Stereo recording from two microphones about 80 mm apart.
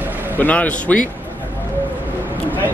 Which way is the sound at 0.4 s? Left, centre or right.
Centre.